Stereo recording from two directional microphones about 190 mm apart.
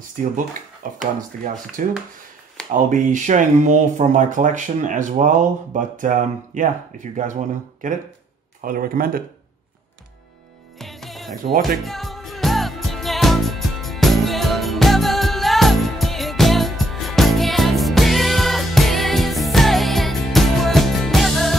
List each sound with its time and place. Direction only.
0.8 s a sound: 40° right (ahead or behind)
1.8 s speech: 45° right (ahead or behind)
8.6 s speech: 45° right (ahead or behind)
10.8 s music: centre (ahead or behind)